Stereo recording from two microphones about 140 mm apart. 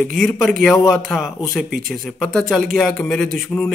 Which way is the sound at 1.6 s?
80° right.